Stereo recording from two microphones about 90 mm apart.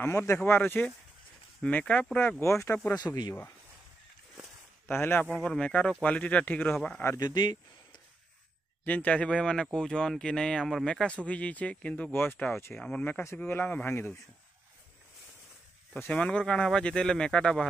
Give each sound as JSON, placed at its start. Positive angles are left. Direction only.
{"t": 0.0, "sound": "speech", "side_deg": 25}
{"t": 2.4, "sound": "speech", "side_deg": 30}
{"t": 2.9, "sound": "speech", "side_deg": 45}
{"t": 4.8, "sound": "speech", "side_deg": 25}
{"t": 5.3, "sound": "speech", "side_deg": 10}
{"t": 7.2, "sound": "speech", "side_deg": 50}
{"t": 8.8, "sound": "speech", "side_deg": 15}
{"t": 12.7, "sound": "speech", "side_deg": 10}
{"t": 16.1, "sound": "speech", "side_deg": 10}